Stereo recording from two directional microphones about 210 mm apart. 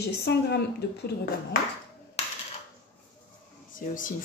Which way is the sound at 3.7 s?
40° left (ahead or behind).